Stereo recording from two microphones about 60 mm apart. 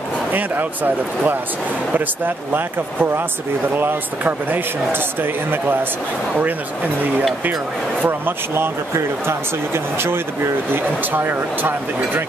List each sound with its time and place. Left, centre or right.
0.3 s speech: right
8.0 s speech: right